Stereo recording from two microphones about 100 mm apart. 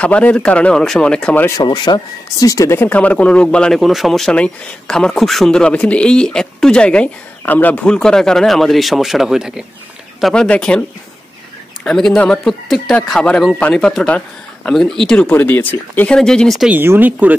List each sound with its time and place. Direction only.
0.0 s speech: 15° left (ahead or behind)
1.6 s speech: 45° left (ahead or behind)
2.4 s speech: 30° left (ahead or behind)
2.8 s speech: 15° left (ahead or behind); by 9.7 s 5° right (ahead or behind)
10.2 s speech: 10° left (ahead or behind)
11.8 s speech: 5° left (ahead or behind)
16.2 s speech: 5° left (ahead or behind)
16.6 s speech: 20° right (ahead or behind)